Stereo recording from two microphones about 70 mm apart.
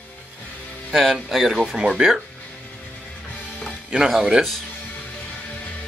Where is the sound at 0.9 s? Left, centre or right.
Centre.